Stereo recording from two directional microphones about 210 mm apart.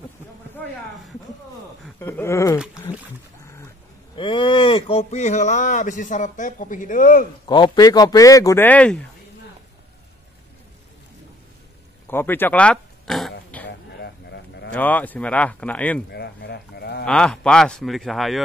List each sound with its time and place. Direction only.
2.0 s speech: 10° left (ahead or behind)
4.1 s speech: 25° left (ahead or behind); by 7.2 s 40° left (ahead or behind)
7.4 s speech: 20° left (ahead or behind)
12.1 s speech: 10° left (ahead or behind)
13.7 s a sound: 50° left (ahead or behind)
14.7 s speech: 5° left (ahead or behind)
16.1 s speech: 50° left (ahead or behind)
17.0 s speech: 5° left (ahead or behind)